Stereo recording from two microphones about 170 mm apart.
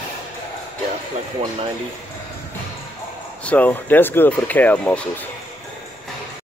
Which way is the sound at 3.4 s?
10° left (ahead or behind).